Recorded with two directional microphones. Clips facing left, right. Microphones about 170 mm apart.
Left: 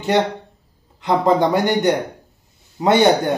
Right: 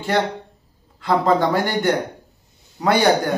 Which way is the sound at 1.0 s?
20° left (ahead or behind).